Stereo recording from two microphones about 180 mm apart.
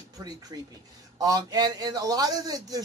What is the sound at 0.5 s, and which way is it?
Speech, 25° right (ahead or behind).